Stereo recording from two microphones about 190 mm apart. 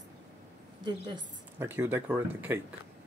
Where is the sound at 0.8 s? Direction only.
25° right (ahead or behind).